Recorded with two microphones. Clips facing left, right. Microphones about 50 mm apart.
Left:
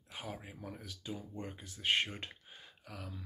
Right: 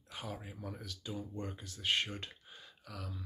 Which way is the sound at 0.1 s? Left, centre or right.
Centre.